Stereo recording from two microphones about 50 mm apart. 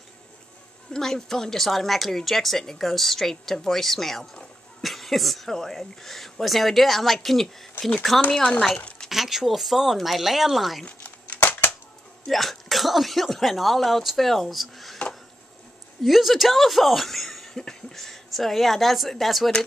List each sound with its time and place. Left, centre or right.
0.9 s a woman's voice: centre
8.8 s a sound: left
9.1 s a woman's voice: centre
11.0 s a sound: left
12.3 s a woman's voice: centre
16.0 s speech: centre